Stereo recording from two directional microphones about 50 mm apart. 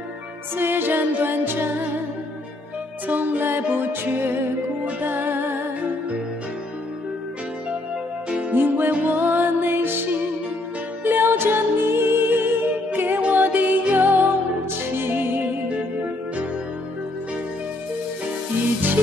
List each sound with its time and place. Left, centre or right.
0.6 s music: right
3.1 s music: right
8.5 s music: right
11.1 s music: right
13.2 s music: right